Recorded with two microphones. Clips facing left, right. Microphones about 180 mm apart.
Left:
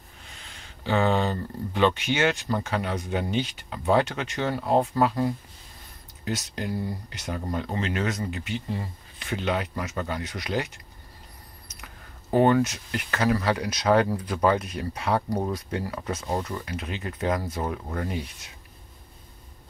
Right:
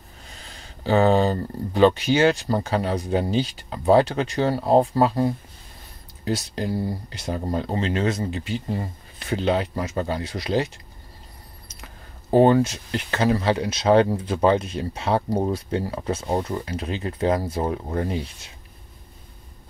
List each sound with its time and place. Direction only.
0.3 s speech: 35° right (ahead or behind)